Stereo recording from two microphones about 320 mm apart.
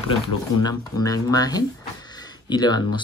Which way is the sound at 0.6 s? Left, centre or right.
Centre.